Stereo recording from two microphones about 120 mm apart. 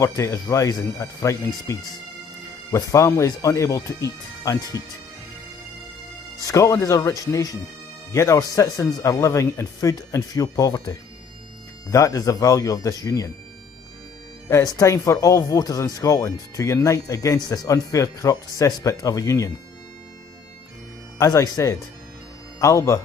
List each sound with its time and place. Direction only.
0.0 s speech: 25° left (ahead or behind)
6.4 s speech: 25° left (ahead or behind)
14.5 s speech: 30° left (ahead or behind)
21.2 s speech: 30° left (ahead or behind)